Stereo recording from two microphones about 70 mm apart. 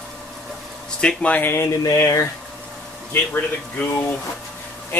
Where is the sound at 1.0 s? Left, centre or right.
Left.